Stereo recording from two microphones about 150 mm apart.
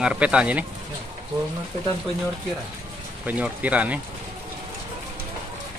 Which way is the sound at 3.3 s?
10° right (ahead or behind).